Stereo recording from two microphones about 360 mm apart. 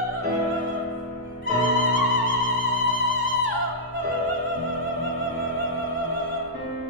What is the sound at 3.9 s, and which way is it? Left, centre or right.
Opera, right.